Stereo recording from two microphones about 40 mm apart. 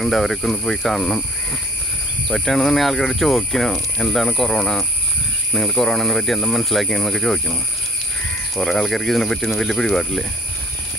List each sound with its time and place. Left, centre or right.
0.0 s speech: centre
2.3 s speech: centre
8.5 s speech: centre